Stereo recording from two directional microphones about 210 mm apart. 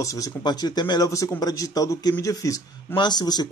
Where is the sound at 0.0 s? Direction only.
15° left (ahead or behind).